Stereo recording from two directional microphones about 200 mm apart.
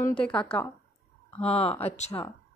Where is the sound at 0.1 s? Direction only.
5° left (ahead or behind).